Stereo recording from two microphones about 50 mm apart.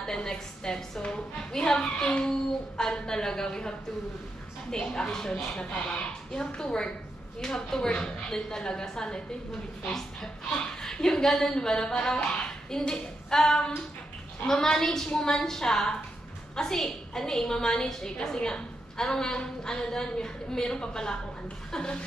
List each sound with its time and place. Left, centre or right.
0.0 s a woman's voice: centre